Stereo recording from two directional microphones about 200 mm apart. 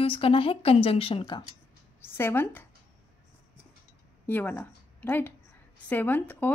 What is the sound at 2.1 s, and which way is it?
Speech, 10° left (ahead or behind).